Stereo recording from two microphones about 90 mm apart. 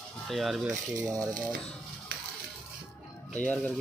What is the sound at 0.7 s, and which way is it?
Speech, 45° right (ahead or behind).